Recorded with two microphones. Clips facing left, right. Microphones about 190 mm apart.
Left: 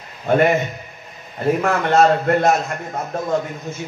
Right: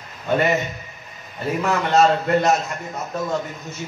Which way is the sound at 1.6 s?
50° left (ahead or behind).